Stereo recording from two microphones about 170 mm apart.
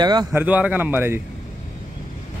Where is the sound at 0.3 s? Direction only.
10° right (ahead or behind).